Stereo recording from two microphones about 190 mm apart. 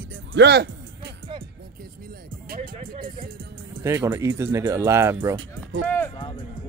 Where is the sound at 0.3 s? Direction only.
60° right (ahead or behind).